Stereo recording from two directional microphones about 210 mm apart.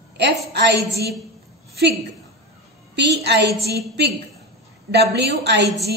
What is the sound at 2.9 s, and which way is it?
Speech, 55° right (ahead or behind).